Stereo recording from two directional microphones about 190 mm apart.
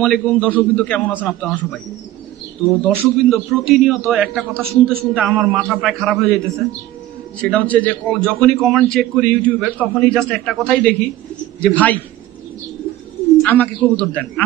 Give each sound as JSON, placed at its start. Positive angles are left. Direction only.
{"t": 0.0, "sound": "a man's voice", "side_deg": 0}
{"t": 2.8, "sound": "a man's voice", "side_deg": 0}
{"t": 7.4, "sound": "a man's voice", "side_deg": 5}
{"t": 13.4, "sound": "a man's voice", "side_deg": 5}